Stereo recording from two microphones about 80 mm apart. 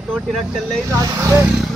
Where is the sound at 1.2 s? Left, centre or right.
Right.